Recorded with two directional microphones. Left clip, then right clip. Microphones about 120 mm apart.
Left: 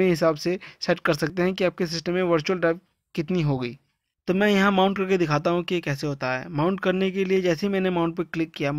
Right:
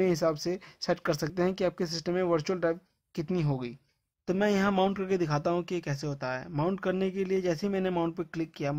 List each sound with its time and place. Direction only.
0.0 s speech: 25° left (ahead or behind)